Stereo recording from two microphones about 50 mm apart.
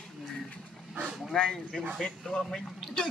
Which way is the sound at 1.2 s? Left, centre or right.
Centre.